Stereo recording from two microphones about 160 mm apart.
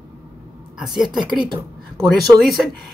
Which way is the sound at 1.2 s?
30° right (ahead or behind).